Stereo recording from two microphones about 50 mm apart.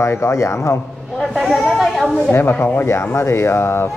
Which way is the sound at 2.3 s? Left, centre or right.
Left.